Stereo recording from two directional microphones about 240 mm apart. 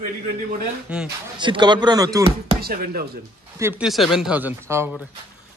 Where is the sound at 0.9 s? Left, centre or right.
Centre.